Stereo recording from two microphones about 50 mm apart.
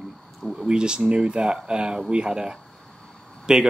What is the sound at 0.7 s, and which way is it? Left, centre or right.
A man's voice, centre.